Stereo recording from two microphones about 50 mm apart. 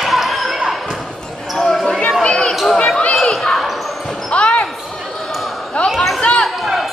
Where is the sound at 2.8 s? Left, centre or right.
Centre.